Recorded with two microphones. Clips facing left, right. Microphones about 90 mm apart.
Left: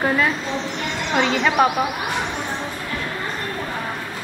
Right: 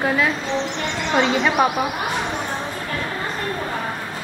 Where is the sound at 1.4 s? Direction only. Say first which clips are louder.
Left 1 dB; centre (ahead or behind).